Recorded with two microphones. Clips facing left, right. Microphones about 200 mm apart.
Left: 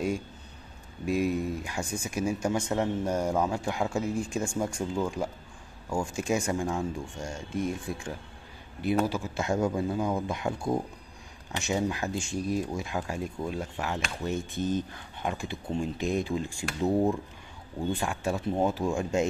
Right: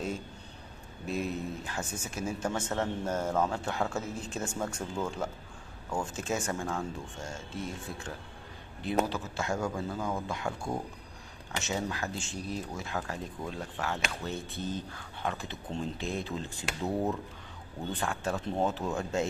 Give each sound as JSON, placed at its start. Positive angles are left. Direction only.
{"t": 1.0, "sound": "speech", "side_deg": 10}